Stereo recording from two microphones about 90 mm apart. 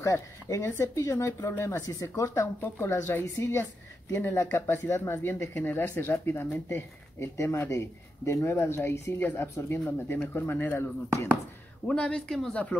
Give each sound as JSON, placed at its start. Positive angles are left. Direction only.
{"t": 0.0, "sound": "speech", "side_deg": 35}
{"t": 11.9, "sound": "speech", "side_deg": 10}